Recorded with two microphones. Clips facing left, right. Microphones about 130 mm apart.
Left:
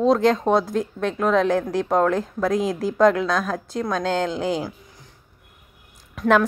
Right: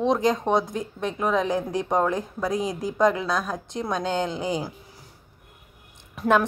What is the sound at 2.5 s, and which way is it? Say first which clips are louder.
Speech: left 4 dB; 90° left.